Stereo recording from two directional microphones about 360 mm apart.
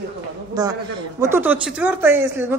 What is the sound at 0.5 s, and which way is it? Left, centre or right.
A woman's voice, centre.